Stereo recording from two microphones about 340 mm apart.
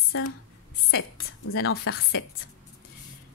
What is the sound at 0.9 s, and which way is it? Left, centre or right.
A woman's voice, left.